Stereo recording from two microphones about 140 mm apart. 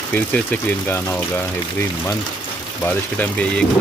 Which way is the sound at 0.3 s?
15° left (ahead or behind).